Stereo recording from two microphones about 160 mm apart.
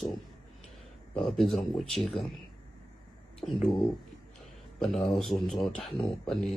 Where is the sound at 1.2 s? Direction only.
Centre (ahead or behind).